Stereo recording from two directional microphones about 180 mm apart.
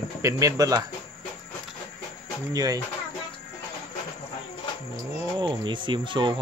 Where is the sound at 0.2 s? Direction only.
15° right (ahead or behind).